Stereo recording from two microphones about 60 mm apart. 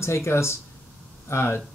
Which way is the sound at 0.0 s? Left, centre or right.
Left.